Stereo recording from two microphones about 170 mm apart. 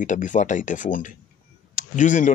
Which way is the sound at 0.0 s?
45° left (ahead or behind).